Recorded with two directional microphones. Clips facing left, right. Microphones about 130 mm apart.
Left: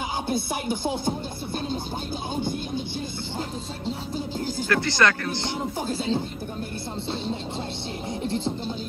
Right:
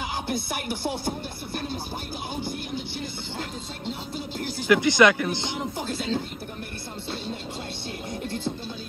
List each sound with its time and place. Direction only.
0.3 s speech: 20° left (ahead or behind)
4.6 s speech: 15° right (ahead or behind)
5.6 s speech: 15° left (ahead or behind)
8.2 s music: 20° left (ahead or behind)